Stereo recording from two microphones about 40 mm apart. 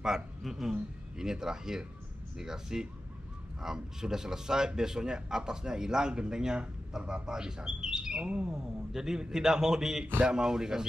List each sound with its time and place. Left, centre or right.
0.4 s a man's voice: centre